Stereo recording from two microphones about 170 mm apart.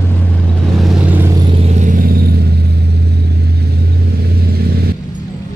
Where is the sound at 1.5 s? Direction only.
40° right (ahead or behind); by 2.4 s 65° right (ahead or behind).